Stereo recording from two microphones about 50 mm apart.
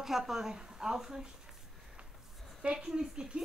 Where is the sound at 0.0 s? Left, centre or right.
Centre.